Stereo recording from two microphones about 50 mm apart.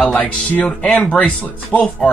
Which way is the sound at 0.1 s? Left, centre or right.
Left.